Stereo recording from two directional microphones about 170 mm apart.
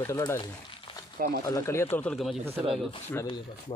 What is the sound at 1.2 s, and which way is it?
Speech, 60° right (ahead or behind).